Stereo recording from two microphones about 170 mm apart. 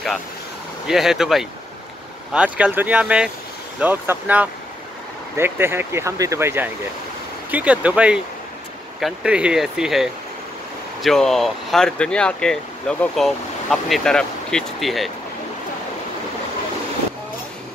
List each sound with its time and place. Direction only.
0.8 s speech: centre (ahead or behind)